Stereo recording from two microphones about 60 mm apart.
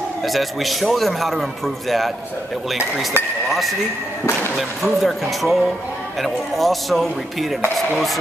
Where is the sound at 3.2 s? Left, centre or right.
Right.